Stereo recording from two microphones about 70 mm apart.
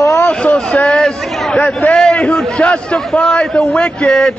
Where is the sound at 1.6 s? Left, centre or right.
Left.